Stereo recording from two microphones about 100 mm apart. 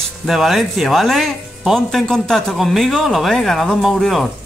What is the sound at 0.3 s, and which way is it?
A man's voice, centre (ahead or behind).